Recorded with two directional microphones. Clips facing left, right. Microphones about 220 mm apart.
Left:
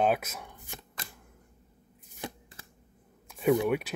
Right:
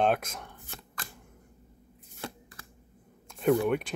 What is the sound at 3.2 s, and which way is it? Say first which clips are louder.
Speech: even; 10° left (ahead or behind).